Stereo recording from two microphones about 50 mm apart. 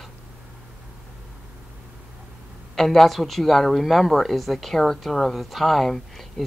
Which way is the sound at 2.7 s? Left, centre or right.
Centre.